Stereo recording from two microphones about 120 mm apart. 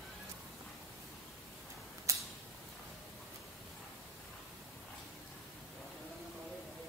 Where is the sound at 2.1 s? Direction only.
25° right (ahead or behind).